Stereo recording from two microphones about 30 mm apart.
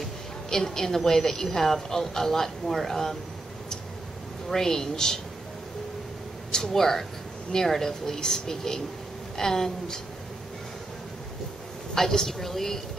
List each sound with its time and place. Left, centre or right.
0.5 s a woman's voice: centre
4.5 s a woman's voice: centre
6.7 s a woman's voice: centre
11.9 s a woman's voice: centre